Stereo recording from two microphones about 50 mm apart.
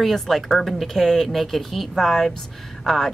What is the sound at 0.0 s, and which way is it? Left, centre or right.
Female singing, centre.